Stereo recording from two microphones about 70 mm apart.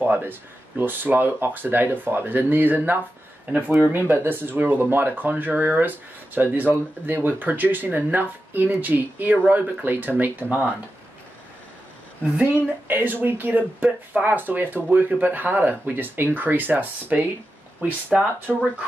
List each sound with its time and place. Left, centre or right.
0.0 s speech: right
12.8 s speech: right